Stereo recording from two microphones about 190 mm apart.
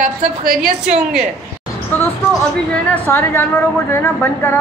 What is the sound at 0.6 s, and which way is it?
Speech, 5° right (ahead or behind).